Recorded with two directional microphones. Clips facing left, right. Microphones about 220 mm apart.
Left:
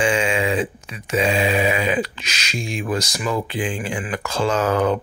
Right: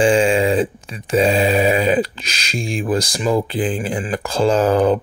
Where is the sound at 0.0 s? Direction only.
35° right (ahead or behind).